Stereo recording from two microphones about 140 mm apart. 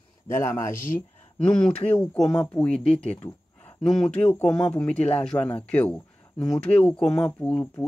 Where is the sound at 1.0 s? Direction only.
10° left (ahead or behind).